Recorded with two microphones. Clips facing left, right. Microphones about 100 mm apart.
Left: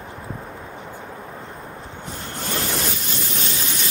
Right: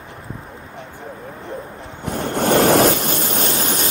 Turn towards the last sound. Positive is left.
turn(degrees=-45)  # may be behind; listen again after turning